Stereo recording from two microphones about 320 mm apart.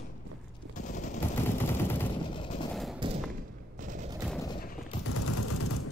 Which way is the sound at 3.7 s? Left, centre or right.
Right.